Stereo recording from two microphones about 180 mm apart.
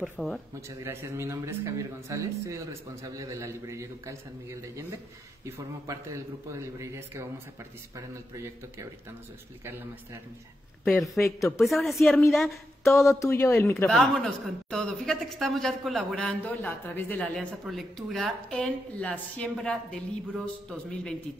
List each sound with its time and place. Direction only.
0.0 s a woman's voice: centre (ahead or behind)
0.8 s a man's voice: 15° right (ahead or behind)
10.8 s a woman's voice: centre (ahead or behind)
11.2 s speech: 15° left (ahead or behind)
11.6 s a woman's voice: centre (ahead or behind)
13.2 s speech: 15° left (ahead or behind)
13.8 s a woman's voice: centre (ahead or behind)